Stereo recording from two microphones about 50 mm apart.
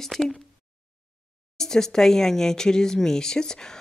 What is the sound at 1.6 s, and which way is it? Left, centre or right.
Speech, centre.